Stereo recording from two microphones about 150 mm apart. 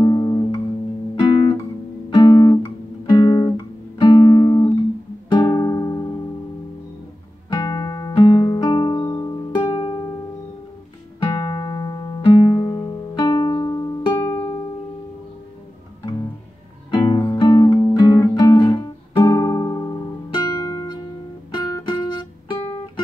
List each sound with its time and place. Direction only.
0.0 s music: 25° left (ahead or behind)
1.3 s guitar: 30° left (ahead or behind)
4.0 s music: 30° left (ahead or behind)
7.5 s music: 25° left (ahead or behind)
11.2 s music: 25° left (ahead or behind)
14.1 s music: 15° left (ahead or behind)
16.9 s music: 30° left (ahead or behind)